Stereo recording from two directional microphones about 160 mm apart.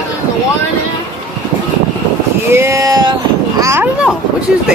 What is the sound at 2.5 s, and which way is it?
A child's voice, 15° right (ahead or behind).